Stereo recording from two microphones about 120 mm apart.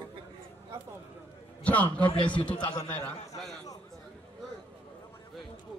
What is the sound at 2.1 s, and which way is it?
Speech, 45° left (ahead or behind).